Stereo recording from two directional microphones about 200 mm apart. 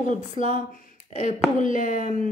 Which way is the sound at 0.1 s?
35° left (ahead or behind).